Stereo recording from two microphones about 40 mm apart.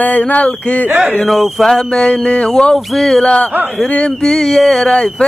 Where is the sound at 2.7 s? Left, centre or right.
Centre.